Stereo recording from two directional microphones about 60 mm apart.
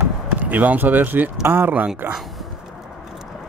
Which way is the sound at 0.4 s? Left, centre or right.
Right.